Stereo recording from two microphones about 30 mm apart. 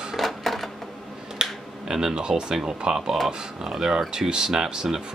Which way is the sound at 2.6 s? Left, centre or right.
Right.